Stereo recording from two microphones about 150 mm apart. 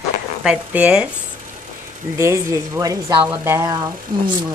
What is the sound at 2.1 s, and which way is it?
Speech, 20° right (ahead or behind).